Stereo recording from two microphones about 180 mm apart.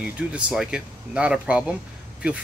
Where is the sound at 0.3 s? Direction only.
5° right (ahead or behind).